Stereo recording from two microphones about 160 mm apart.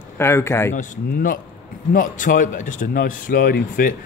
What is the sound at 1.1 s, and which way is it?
A man's voice, 65° left (ahead or behind).